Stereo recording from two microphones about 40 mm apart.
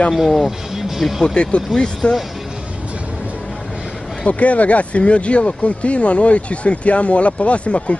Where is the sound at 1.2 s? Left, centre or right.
Left.